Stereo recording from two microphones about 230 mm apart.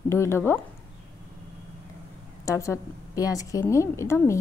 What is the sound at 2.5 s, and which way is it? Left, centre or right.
Speech, centre.